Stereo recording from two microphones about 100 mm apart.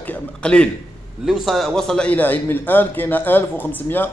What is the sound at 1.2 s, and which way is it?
A man's voice, 5° right (ahead or behind).